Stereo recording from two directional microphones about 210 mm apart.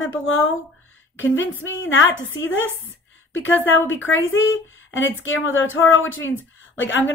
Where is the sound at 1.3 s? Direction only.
65° left (ahead or behind).